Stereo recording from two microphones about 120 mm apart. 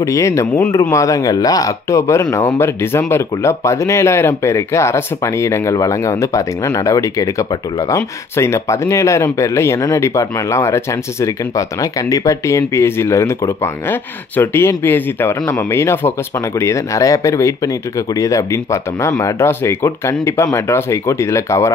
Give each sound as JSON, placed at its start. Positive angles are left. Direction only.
{"t": 0.0, "sound": "speech", "side_deg": 25}